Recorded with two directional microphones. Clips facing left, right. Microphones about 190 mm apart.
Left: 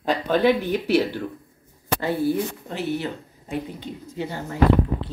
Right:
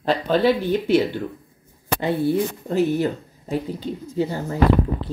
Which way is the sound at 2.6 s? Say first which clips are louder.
Right 7 dB; 40° right (ahead or behind).